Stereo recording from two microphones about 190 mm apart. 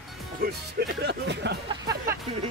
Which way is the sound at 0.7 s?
60° right (ahead or behind).